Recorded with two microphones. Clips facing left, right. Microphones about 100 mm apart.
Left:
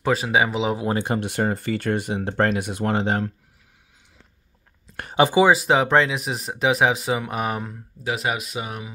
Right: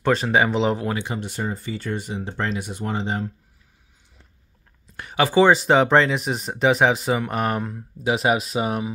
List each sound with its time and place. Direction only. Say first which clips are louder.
0.0 s speech: right 1 dB; 5° left (ahead or behind)
1.0 s speech: left 5 dB; 60° left (ahead or behind)
5.1 s speech: left 2 dB; 20° left (ahead or behind)
5.7 s speech: right 2 dB; centre (ahead or behind)
8.0 s speech: right 5 dB; 25° right (ahead or behind)